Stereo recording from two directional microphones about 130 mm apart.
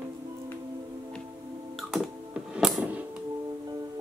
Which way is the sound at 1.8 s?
Centre (ahead or behind).